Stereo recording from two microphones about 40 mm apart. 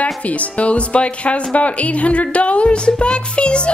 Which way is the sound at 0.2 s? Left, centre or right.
Left.